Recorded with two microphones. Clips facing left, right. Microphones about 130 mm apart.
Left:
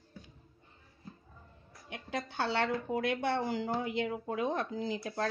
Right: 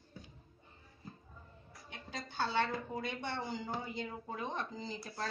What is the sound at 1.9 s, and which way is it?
Speech, 85° left.